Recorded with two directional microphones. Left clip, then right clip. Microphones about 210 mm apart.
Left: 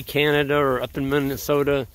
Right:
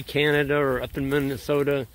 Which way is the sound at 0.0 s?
15° left (ahead or behind).